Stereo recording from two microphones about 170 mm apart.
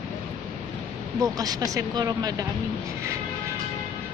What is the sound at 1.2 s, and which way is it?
Speech, 20° right (ahead or behind).